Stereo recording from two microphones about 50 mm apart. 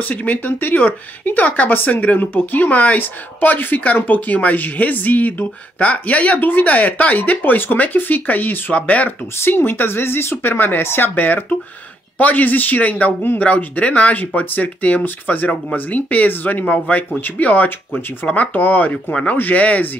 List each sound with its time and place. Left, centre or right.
0.0 s speech: left
2.7 s speech: left
9.4 s speech: left
16.6 s speech: left